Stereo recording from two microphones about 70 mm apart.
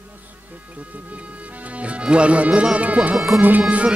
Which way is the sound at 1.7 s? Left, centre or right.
Centre.